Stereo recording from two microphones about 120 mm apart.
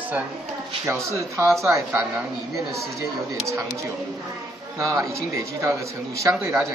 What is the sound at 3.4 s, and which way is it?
Speech, 25° right (ahead or behind).